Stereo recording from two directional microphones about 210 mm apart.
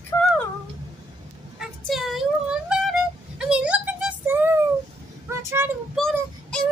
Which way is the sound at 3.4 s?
5° right (ahead or behind).